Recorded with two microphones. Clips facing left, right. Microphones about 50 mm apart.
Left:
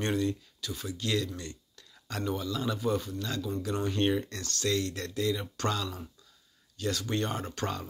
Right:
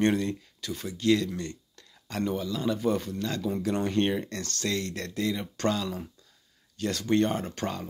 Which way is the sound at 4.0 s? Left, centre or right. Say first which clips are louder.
Left 2 dB; centre.